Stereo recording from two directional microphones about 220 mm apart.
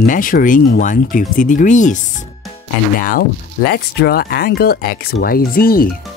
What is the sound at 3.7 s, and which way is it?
Speech, 45° left (ahead or behind).